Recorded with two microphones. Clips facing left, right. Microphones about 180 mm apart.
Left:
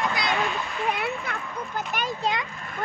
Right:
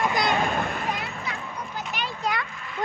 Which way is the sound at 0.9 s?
55° left (ahead or behind).